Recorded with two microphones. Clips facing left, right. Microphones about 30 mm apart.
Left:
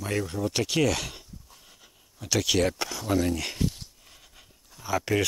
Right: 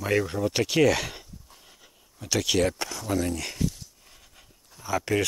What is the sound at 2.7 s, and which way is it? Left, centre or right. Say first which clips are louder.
Speech: left 1 dB; centre.